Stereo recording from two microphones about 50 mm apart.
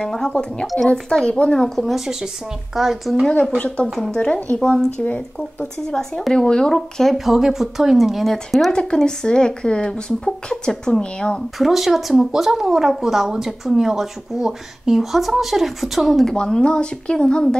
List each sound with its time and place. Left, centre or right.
0.0 s speech: centre
1.9 s speech: centre
3.5 s speech: left
3.8 s speech: centre
4.1 s speech: centre
5.9 s speech: centre
8.7 s speech: centre
11.5 s speech: centre
16.3 s speech: centre